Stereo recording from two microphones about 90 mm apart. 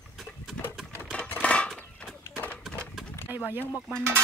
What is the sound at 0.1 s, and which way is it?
Pigeon, 5° right (ahead or behind).